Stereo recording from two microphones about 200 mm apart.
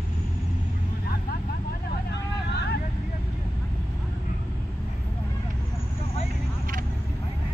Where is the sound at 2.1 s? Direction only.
55° left (ahead or behind).